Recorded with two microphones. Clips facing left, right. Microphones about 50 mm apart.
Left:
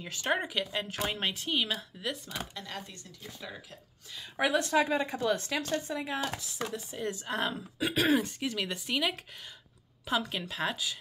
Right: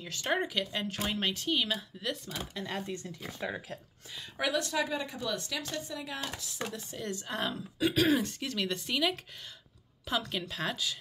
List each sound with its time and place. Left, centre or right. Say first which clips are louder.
0.0 s speech: even; centre
2.7 s speech: right 6 dB; right
4.4 s a woman's voice: left 4 dB; left
6.7 s speech: left 2 dB; centre